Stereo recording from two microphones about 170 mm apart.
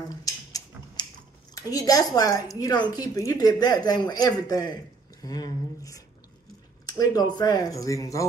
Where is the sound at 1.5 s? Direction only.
20° left (ahead or behind).